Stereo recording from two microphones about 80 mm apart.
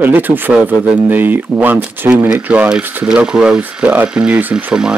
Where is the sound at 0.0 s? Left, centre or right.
Right.